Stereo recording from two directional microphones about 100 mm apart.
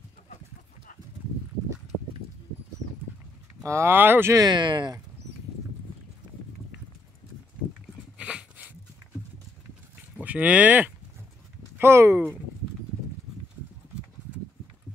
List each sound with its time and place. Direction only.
3.6 s speech: 25° right (ahead or behind)
4.3 s speech: 40° right (ahead or behind)
8.2 s a sound: 10° right (ahead or behind)
10.2 s speech: 15° right (ahead or behind)